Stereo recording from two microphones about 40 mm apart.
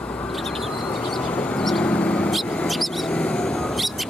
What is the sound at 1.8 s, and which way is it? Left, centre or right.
Vehicle, left.